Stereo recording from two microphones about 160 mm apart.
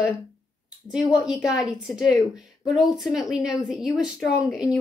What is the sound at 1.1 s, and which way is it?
A woman's voice, 5° right (ahead or behind).